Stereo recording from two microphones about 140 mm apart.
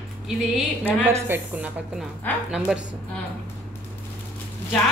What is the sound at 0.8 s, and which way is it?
A woman's voice, 15° right (ahead or behind).